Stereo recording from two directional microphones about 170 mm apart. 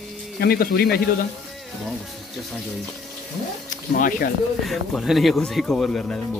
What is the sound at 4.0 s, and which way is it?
Speech, 55° left (ahead or behind).